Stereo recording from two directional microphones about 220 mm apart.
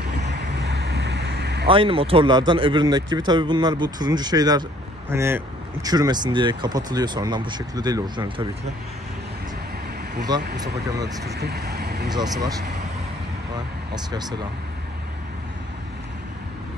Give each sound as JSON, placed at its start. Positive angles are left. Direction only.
{"t": 0.1, "sound": "vehicle", "side_deg": -50}
{"t": 1.7, "sound": "speech", "side_deg": -25}
{"t": 10.6, "sound": "speech", "side_deg": -15}
{"t": 11.3, "sound": "speech", "side_deg": -45}
{"t": 12.1, "sound": "speech", "side_deg": -20}